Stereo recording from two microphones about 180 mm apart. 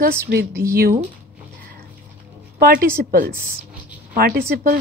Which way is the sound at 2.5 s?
55° right (ahead or behind).